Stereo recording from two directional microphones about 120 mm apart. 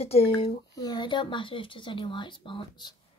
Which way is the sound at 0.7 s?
35° left (ahead or behind).